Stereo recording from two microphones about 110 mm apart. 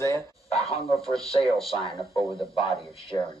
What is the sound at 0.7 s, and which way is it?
Speech, centre (ahead or behind).